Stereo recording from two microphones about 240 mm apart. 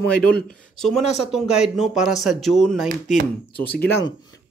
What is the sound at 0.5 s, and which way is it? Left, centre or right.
Speech, centre.